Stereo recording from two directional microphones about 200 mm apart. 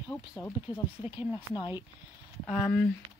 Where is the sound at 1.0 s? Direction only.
10° right (ahead or behind).